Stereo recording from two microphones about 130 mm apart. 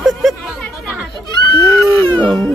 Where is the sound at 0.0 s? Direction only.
Centre (ahead or behind).